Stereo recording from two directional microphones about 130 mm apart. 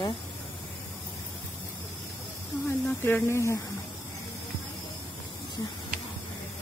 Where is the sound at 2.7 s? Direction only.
15° left (ahead or behind).